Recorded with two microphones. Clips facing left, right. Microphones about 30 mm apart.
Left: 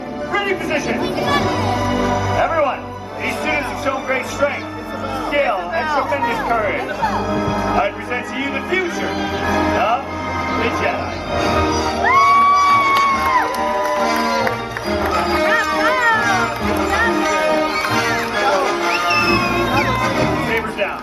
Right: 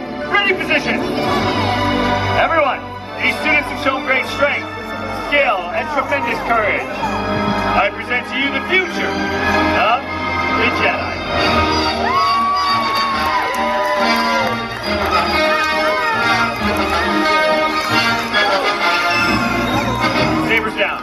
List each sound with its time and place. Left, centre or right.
0.3 s speech: right
6.5 s speech: right
7.2 s speech: right
10.5 s music: right
19.1 s music: right
19.7 s music: left
20.0 s music: right